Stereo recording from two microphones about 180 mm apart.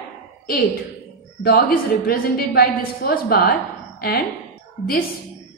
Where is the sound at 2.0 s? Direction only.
60° left (ahead or behind).